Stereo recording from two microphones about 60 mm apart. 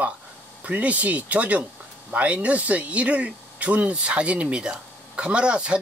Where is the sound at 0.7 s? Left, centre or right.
Right.